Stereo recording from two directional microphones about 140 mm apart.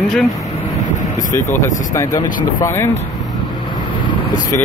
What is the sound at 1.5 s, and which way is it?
Speech, 20° left (ahead or behind).